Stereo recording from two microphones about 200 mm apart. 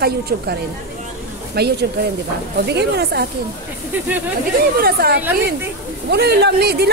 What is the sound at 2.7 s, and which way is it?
Speech, 55° right (ahead or behind).